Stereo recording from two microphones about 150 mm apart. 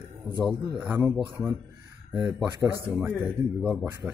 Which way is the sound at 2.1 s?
10° right (ahead or behind).